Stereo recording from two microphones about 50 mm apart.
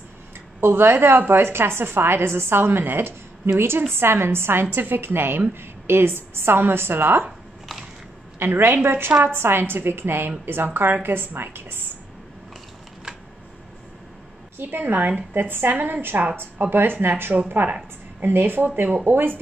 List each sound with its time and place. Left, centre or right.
0.6 s a woman's voice: right
1.5 s a woman's voice: right
8.4 s a woman's voice: right
14.6 s a woman's voice: right
17.3 s speech: centre
18.2 s a woman's voice: right